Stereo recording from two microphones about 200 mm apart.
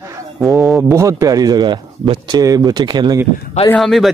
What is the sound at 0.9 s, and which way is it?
Speech, 15° right (ahead or behind).